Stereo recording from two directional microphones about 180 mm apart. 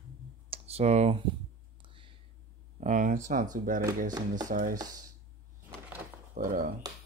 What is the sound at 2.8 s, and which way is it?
Speech, 45° right (ahead or behind).